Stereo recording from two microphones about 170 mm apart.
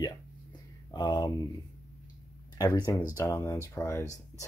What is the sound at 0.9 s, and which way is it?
Speech, 25° left (ahead or behind).